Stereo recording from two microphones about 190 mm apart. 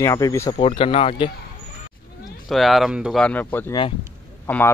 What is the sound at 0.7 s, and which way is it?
Speech, 30° left (ahead or behind).